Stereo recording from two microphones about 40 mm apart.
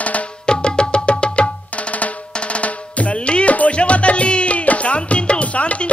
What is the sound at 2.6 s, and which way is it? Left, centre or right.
Music, left.